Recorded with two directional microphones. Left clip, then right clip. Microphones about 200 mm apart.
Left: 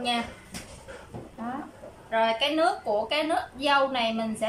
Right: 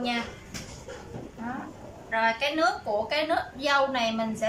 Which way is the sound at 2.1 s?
10° left (ahead or behind).